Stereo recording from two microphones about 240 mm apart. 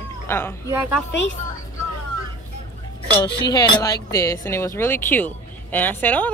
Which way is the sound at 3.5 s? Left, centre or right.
Centre.